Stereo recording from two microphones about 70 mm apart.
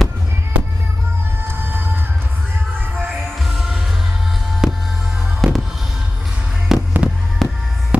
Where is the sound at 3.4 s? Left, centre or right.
Centre.